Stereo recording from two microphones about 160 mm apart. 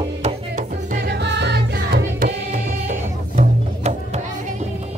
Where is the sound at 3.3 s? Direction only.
50° right (ahead or behind).